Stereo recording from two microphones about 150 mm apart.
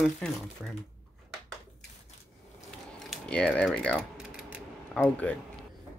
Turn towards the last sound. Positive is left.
turn(degrees=10)  # may be behind; listen again after turning